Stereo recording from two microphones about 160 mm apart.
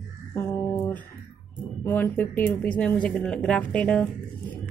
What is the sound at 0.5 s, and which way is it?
Music, 15° left (ahead or behind).